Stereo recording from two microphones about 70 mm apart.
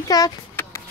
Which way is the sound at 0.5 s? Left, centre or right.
Left.